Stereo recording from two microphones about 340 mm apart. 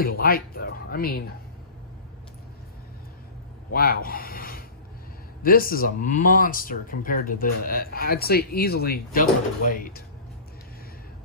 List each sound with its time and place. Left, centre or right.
0.0 s speech: left
3.7 s a sound: left
5.4 s speech: left